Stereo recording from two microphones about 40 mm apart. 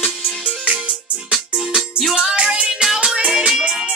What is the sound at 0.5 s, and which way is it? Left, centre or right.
Music, right.